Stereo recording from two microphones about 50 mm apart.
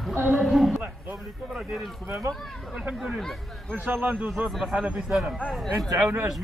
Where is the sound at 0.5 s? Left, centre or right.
Centre.